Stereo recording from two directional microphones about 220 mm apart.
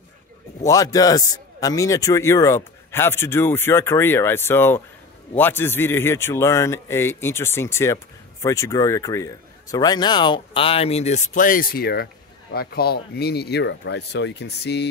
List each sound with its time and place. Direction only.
0.7 s a man's voice: 15° left (ahead or behind); by 14.9 s 50° left (ahead or behind)